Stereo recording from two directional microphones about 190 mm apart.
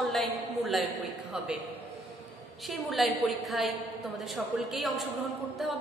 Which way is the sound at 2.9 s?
Centre (ahead or behind).